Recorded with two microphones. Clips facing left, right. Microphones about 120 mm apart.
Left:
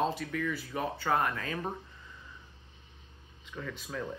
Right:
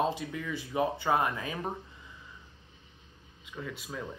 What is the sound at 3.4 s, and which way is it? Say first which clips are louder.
Speech: even; 10° right (ahead or behind).